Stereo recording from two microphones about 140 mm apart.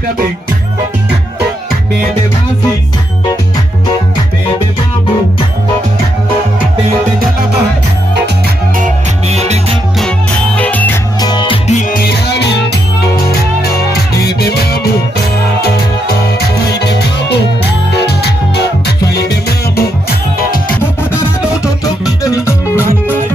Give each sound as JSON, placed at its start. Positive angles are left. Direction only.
{"t": 9.3, "sound": "music", "side_deg": -50}
{"t": 9.9, "sound": "music", "side_deg": 5}
{"t": 11.1, "sound": "music", "side_deg": 30}
{"t": 11.6, "sound": "music", "side_deg": 60}
{"t": 22.2, "sound": "music", "side_deg": 25}